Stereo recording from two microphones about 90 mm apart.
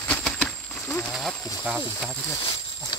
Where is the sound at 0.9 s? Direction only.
Centre (ahead or behind).